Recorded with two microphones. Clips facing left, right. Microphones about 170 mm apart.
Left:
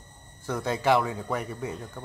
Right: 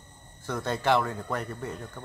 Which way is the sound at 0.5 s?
10° left (ahead or behind).